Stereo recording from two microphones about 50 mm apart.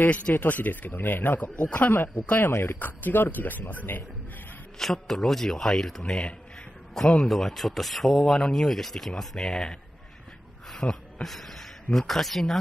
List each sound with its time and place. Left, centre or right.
0.0 s speech: left
1.5 s a man's voice: left
2.5 s speech: left
4.7 s a man's voice: centre
8.4 s speech: centre
10.7 s a sound: centre
11.2 s speech: centre